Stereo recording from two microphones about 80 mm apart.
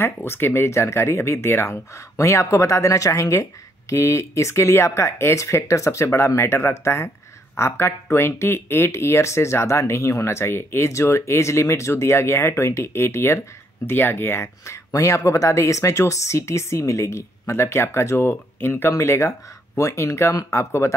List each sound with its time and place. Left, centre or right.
0.0 s speech: left
14.9 s speech: left